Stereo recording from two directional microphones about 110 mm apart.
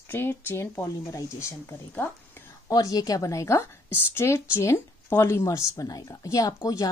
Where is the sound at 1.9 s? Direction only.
15° left (ahead or behind).